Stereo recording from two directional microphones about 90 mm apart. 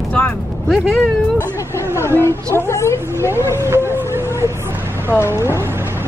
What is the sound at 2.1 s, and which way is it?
A woman's voice, 30° left (ahead or behind).